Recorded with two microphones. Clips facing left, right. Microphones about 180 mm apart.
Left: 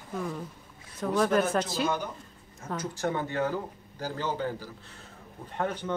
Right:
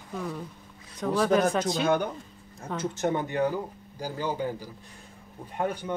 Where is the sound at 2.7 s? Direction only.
20° right (ahead or behind).